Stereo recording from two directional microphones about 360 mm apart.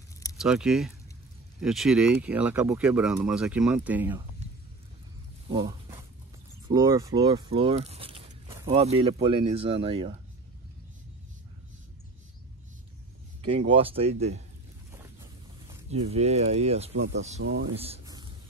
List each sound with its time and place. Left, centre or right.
0.4 s speech: centre
5.5 s dog: centre
6.7 s speech: centre
13.5 s speech: centre
15.7 s speech: centre
17.4 s speech: right
17.7 s a sound: centre